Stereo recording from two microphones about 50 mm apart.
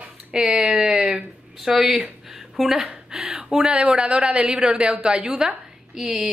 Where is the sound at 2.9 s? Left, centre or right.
Right.